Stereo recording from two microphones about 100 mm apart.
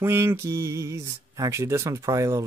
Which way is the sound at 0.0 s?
25° right (ahead or behind).